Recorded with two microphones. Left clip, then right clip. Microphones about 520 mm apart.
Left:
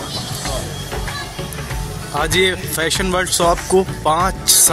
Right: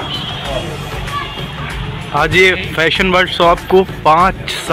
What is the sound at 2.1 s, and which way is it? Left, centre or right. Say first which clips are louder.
Speech: right 6 dB; left.